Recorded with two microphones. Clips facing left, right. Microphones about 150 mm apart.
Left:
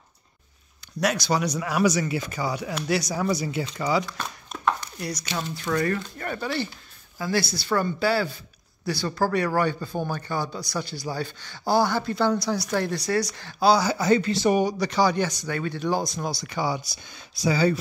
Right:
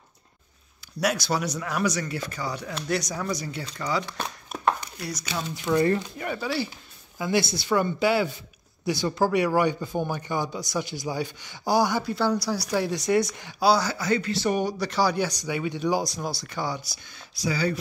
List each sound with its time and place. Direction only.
1.0 s speech: centre (ahead or behind)
4.5 s chopping: 10° right (ahead or behind)
5.5 s speech: 20° right (ahead or behind)
6.1 s speech: 5° right (ahead or behind)
7.2 s speech: 20° right (ahead or behind)
12.9 s speech: 20° right (ahead or behind)
13.5 s speech: 10° right (ahead or behind)
13.9 s speech: 25° left (ahead or behind)
14.4 s speech: 5° left (ahead or behind); by 16.1 s 15° right (ahead or behind)
16.2 s speech: centre (ahead or behind)
16.8 s speech: 25° left (ahead or behind)